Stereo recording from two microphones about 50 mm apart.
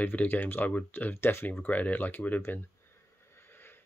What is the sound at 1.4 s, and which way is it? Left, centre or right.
Speech, left.